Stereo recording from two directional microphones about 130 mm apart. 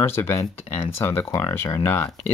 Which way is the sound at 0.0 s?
20° left (ahead or behind).